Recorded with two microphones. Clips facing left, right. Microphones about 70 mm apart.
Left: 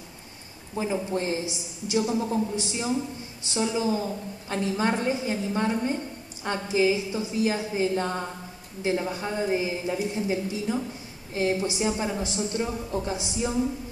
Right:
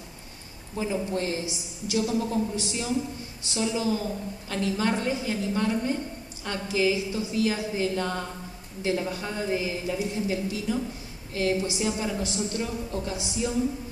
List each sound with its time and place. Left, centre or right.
0.7 s a woman's voice: left